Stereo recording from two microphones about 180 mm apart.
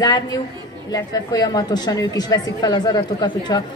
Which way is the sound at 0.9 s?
20° left (ahead or behind).